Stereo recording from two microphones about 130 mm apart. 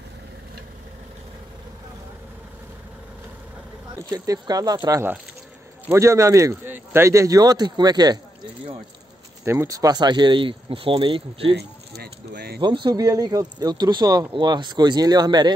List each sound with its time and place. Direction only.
4.1 s a man's voice: 30° right (ahead or behind)
5.9 s a man's voice: 25° right (ahead or behind)
9.4 s speech: 20° right (ahead or behind); by 11.5 s 45° right (ahead or behind)
12.5 s speech: 35° right (ahead or behind)